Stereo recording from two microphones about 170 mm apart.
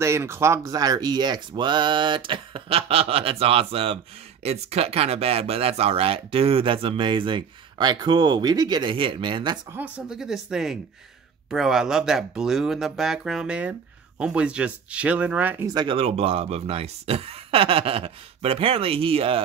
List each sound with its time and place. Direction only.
0.0 s speech: 15° right (ahead or behind)
9.7 s speech: 10° right (ahead or behind)
15.7 s speech: 30° right (ahead or behind)